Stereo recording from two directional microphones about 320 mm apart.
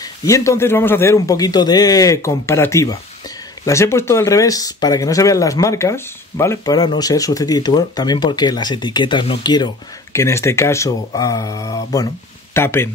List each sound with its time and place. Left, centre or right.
0.0 s speech: centre